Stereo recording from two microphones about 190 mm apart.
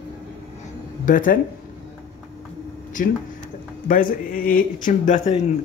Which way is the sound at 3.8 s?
45° left (ahead or behind).